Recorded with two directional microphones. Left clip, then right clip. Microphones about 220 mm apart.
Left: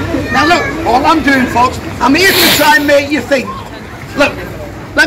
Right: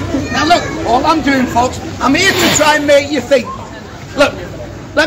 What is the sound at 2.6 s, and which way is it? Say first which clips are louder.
Speech: left 1 dB; 25° right (ahead or behind).